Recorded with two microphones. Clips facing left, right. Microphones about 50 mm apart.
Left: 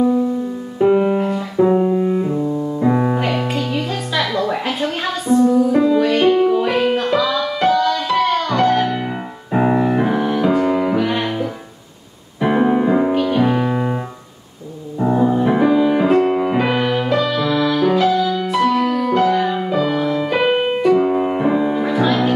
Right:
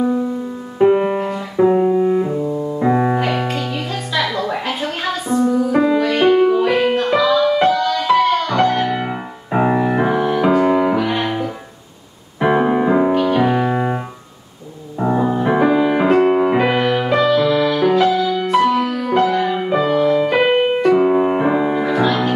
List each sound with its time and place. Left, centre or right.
0.8 s music: centre
1.1 s music: centre
3.2 s music: centre
5.7 s music: centre
5.9 s music: centre
9.0 s music: centre
15.1 s music: centre
16.6 s music: centre
20.9 s piano: centre
21.8 s music: centre